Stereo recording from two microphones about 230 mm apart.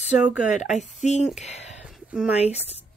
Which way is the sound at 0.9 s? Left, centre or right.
Left.